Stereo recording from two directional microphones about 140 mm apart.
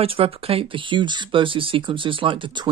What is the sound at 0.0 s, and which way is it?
Speech, 40° right (ahead or behind).